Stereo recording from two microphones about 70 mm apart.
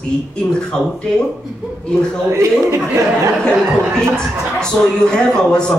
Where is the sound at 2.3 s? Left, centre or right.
Right.